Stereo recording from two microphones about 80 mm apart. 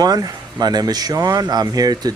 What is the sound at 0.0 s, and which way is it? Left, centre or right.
Speech, right.